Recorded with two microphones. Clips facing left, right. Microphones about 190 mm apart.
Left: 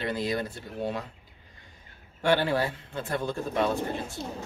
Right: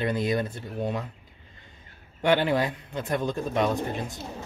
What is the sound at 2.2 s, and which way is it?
Speech, 20° right (ahead or behind).